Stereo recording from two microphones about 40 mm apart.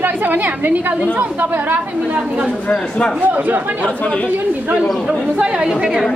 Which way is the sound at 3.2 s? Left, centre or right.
Right.